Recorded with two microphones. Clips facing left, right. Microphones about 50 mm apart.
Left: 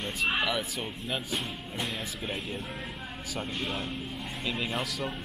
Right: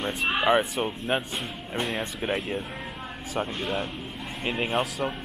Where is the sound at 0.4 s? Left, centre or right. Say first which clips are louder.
Right 8 dB; right.